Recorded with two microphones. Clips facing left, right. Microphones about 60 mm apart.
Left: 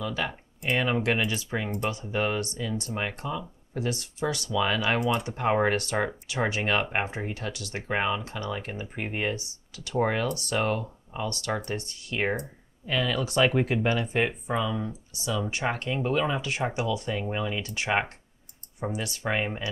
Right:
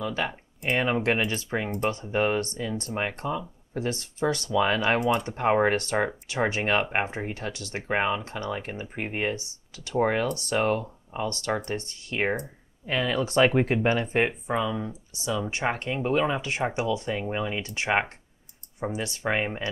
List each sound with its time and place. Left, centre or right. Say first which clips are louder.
0.0 s speech: right 2 dB; right
7.9 s speech: right 2 dB; centre
8.2 s speech: right 1 dB; right
12.2 s speech: right 1 dB; centre
12.8 s speech: right 1 dB; right
14.5 s speech: right 1 dB; centre
14.9 s speech: right 1 dB; right